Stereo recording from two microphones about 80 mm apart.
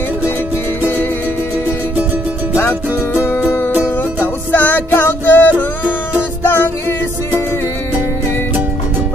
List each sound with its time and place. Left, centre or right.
4.5 s music: left